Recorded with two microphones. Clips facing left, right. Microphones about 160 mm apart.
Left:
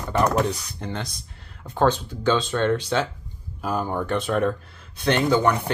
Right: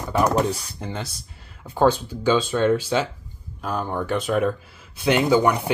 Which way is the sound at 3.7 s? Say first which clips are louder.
Even; 5° left (ahead or behind).